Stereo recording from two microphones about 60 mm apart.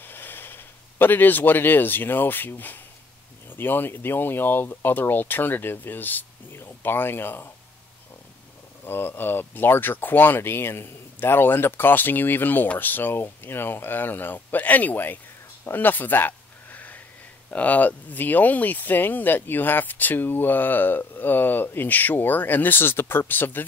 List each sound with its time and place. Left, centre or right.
0.0 s speech: left
8.8 s speech: left
15.6 s a sound: left
17.5 s speech: left